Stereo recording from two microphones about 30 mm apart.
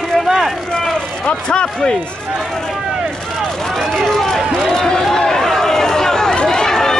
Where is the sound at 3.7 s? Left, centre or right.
Centre.